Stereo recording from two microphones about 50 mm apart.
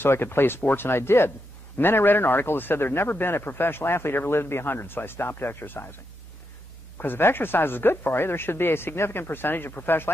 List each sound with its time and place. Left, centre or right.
0.1 s speech: left
1.8 s speech: left
7.0 s speech: left